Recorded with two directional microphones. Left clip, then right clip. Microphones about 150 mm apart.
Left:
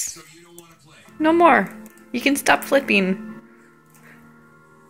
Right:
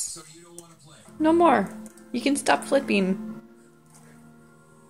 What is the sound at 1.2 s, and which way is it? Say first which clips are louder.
Speech: left 4 dB; centre (ahead or behind).